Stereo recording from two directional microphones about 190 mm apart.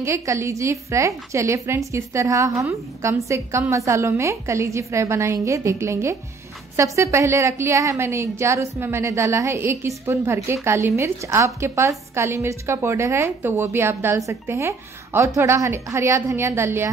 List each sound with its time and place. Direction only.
0.0 s a woman's voice: 15° right (ahead or behind)